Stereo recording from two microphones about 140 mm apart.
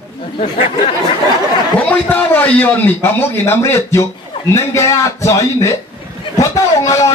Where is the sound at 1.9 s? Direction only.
10° left (ahead or behind).